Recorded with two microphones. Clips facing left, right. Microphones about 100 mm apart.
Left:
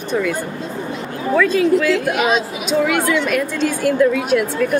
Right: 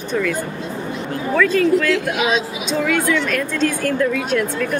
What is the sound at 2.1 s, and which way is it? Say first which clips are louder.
Speech: left 2 dB; 50° left (ahead or behind).